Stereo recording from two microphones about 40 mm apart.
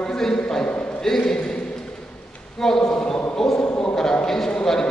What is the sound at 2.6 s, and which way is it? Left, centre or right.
A man's voice, centre.